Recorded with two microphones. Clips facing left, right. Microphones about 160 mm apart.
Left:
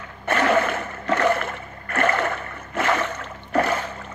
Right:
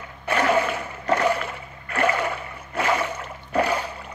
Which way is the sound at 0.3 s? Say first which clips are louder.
Left 1 dB; 10° right (ahead or behind).